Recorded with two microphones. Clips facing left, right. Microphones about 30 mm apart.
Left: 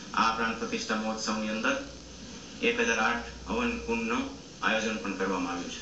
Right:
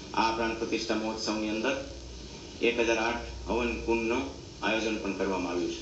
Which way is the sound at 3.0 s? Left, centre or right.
Centre.